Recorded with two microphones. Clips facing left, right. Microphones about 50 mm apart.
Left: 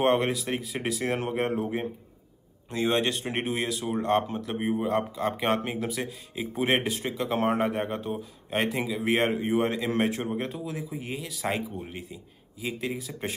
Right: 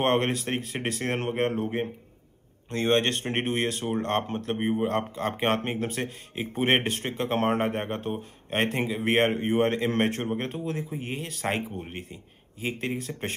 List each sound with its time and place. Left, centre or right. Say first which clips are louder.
0.0 s speech: even; right
2.7 s speech: right 2 dB; right